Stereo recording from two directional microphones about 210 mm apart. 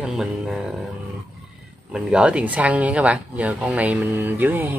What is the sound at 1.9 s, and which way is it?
Speech, 5° right (ahead or behind).